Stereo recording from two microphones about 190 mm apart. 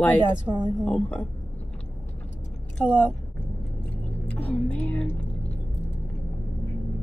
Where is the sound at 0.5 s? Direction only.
10° right (ahead or behind).